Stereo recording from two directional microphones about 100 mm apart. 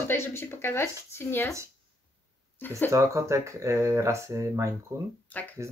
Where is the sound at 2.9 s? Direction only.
30° right (ahead or behind).